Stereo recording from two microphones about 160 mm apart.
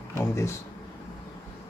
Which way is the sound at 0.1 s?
20° left (ahead or behind).